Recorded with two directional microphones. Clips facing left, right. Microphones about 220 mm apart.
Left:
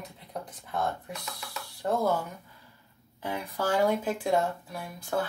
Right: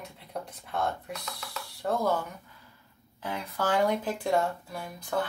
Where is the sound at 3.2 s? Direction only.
10° left (ahead or behind).